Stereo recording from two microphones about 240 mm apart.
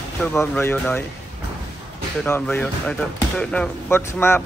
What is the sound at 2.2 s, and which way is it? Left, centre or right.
Speech, centre.